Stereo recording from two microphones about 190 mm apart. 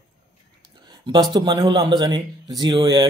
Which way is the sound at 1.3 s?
20° right (ahead or behind).